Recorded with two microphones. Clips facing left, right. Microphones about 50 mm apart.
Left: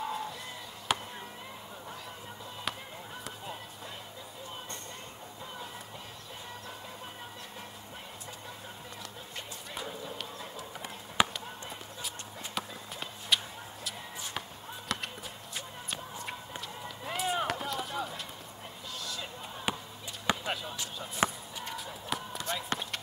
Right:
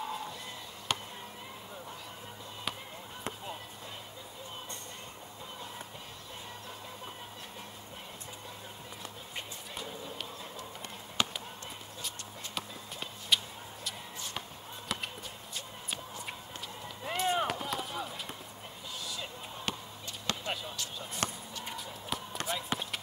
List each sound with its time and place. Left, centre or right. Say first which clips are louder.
0.0 s music: left 3 dB; centre
0.9 s chop: left 3 dB; centre
9.8 s clip-clop: left 2 dB; centre
12.5 s music: left 2 dB; centre
14.9 s music: left 1 dB; centre
16.8 s run: right 2 dB; centre
19.7 s basketball bounce: left 4 dB; centre
21.2 s a sound: left 7 dB; centre
21.7 s run: left 3 dB; centre
22.5 s basketball bounce: left 1 dB; centre